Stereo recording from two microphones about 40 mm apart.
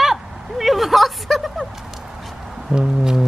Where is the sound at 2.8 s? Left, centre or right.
Centre.